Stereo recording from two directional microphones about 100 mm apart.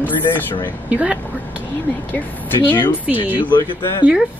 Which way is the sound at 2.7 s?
20° left (ahead or behind).